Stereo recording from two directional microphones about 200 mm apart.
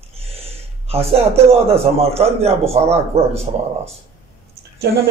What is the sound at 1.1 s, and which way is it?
A man's voice, 30° right (ahead or behind).